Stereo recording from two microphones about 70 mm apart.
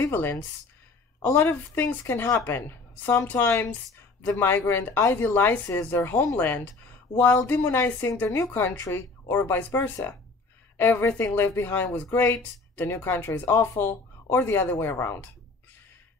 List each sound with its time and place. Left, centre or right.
0.0 s a woman's voice: left
7.8 s a woman's voice: left